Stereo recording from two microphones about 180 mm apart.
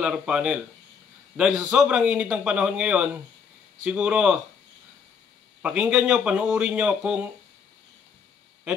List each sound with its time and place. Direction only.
0.0 s a man's voice: 5° right (ahead or behind)
5.6 s a man's voice: 5° right (ahead or behind)